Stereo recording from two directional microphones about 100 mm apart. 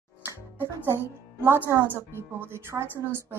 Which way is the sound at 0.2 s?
20° right (ahead or behind).